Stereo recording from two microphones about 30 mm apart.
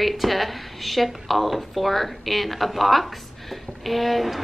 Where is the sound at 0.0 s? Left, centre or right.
Centre.